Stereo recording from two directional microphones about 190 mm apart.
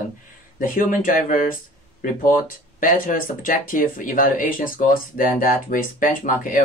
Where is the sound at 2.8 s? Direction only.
45° left (ahead or behind).